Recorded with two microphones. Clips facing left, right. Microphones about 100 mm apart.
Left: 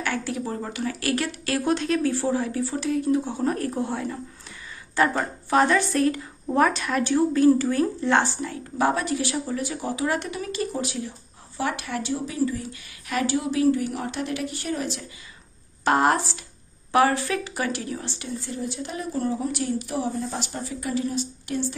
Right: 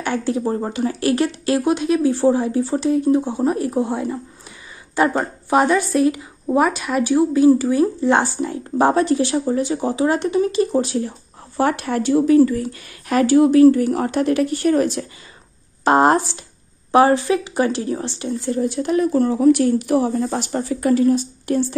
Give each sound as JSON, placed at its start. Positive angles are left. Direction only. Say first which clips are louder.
{"t": 0.0, "sound": "a woman's voice", "louder": "right 7 dB", "side_deg": -25}
{"t": 8.7, "sound": "speech", "louder": "right 8 dB", "side_deg": -30}
{"t": 13.1, "sound": "speech", "louder": "right 11 dB", "side_deg": -50}
{"t": 15.8, "sound": "a woman's voice", "louder": "right 6 dB", "side_deg": -30}
{"t": 18.6, "sound": "speech", "louder": "right 16 dB", "side_deg": -60}